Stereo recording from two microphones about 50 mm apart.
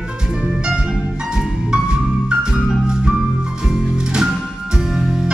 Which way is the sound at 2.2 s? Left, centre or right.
Centre.